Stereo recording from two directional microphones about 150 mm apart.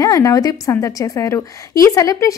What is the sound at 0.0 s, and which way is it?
A woman's voice, 20° left (ahead or behind).